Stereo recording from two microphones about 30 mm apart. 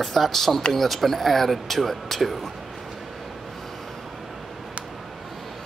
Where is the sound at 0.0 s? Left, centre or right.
Centre.